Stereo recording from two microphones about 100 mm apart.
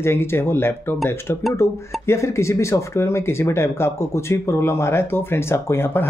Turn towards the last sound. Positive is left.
turn(degrees=25)  # may be behind; listen again after turning